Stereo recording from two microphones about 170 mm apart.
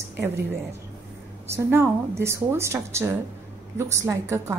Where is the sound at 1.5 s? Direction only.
15° right (ahead or behind).